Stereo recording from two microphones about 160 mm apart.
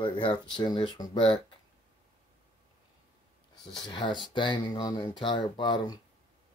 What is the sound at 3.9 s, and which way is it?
Speech, 30° left (ahead or behind).